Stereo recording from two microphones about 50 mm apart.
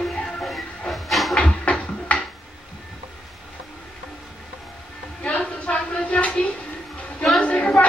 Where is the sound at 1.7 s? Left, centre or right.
Left.